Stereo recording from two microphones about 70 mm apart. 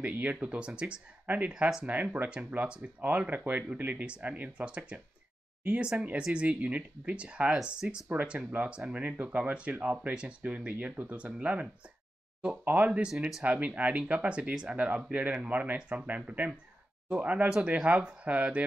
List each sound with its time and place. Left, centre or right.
0.0 s speech: right